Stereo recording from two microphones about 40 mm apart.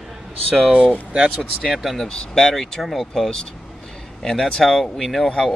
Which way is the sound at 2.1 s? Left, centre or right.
Centre.